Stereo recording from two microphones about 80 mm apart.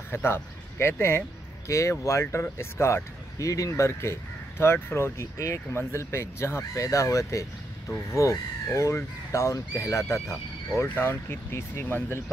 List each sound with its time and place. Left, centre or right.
0.1 s speech: left
6.7 s speech: left